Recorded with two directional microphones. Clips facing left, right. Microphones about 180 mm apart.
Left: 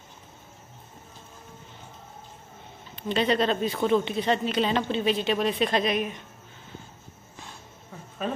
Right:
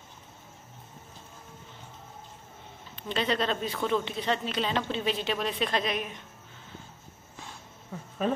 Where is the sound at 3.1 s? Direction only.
10° left (ahead or behind).